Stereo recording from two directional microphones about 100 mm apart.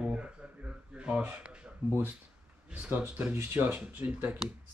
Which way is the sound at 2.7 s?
15° right (ahead or behind).